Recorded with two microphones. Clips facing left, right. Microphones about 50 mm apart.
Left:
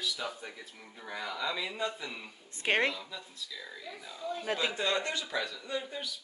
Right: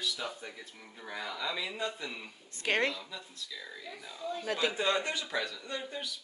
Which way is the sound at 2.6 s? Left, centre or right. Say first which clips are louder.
Left 1 dB; left.